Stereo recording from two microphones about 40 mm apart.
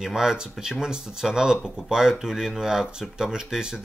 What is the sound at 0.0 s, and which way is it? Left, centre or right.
Speech, centre.